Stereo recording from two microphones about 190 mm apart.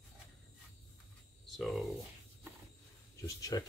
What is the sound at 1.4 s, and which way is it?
Speech, centre (ahead or behind).